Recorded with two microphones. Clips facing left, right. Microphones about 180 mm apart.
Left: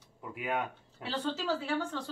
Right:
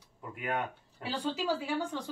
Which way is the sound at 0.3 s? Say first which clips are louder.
Even; 5° left (ahead or behind).